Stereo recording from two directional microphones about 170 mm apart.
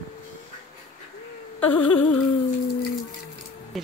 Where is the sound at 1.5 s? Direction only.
10° left (ahead or behind).